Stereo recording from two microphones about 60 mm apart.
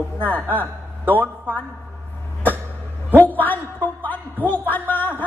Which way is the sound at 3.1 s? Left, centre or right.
Left.